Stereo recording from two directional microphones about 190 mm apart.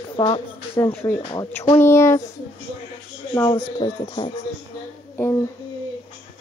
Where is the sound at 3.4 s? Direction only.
25° left (ahead or behind).